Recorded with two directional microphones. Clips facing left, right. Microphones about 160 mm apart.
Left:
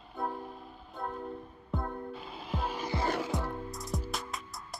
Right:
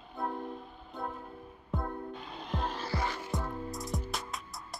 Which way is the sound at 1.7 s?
Centre (ahead or behind).